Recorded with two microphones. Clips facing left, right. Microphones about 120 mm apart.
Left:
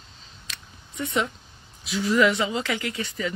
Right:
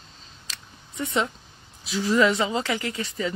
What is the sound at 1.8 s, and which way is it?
Speech, 30° right (ahead or behind).